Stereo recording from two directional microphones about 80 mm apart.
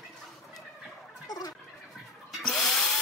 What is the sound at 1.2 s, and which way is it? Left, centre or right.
Fowl, left.